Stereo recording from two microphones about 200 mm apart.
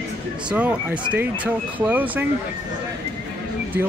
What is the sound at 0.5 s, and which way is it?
Speech, 10° right (ahead or behind).